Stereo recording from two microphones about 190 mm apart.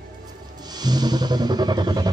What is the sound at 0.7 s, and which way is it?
Music, 20° right (ahead or behind).